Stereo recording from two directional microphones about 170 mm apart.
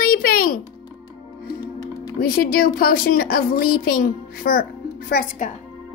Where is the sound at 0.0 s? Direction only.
60° left (ahead or behind).